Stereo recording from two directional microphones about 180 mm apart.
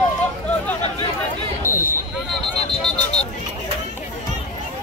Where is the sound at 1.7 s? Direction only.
50° left (ahead or behind).